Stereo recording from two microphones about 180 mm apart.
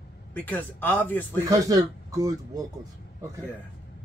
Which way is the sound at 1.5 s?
20° right (ahead or behind).